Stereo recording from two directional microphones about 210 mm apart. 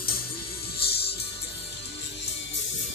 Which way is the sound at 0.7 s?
50° left (ahead or behind).